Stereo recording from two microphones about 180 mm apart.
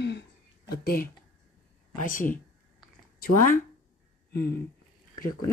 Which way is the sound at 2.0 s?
50° left (ahead or behind).